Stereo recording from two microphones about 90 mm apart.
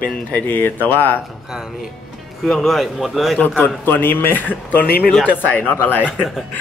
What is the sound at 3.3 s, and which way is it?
A man's voice, 20° left (ahead or behind).